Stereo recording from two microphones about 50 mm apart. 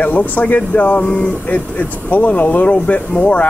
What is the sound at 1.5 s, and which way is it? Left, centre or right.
Speech, left.